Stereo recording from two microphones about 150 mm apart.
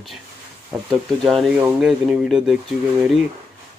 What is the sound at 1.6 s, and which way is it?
Speech, 10° right (ahead or behind).